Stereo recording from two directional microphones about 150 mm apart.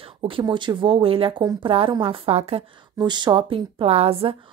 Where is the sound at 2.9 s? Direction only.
30° right (ahead or behind).